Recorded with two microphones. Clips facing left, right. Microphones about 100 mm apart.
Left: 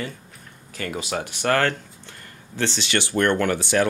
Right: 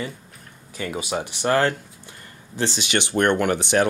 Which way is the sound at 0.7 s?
15° right (ahead or behind).